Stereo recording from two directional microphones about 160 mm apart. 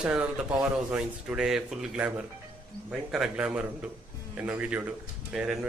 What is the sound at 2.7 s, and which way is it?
Speech, 35° left (ahead or behind).